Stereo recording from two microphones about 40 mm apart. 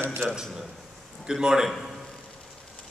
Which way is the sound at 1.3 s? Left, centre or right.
Centre.